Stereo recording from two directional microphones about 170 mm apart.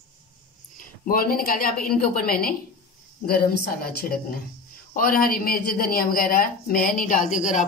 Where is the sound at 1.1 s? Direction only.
60° left (ahead or behind).